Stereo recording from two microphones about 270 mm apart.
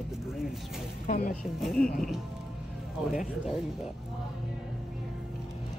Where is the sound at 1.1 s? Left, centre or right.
Left.